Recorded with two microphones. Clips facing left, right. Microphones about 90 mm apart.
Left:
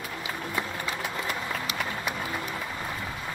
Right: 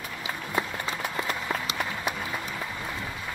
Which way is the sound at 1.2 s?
35° right (ahead or behind).